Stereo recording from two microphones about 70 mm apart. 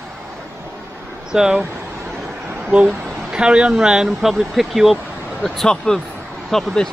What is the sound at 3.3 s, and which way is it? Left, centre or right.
Speech, centre.